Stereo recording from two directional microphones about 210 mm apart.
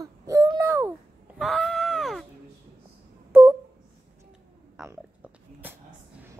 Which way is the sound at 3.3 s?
10° right (ahead or behind).